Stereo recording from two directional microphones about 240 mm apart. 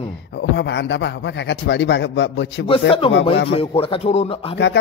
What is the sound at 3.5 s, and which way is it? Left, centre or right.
Speech, left.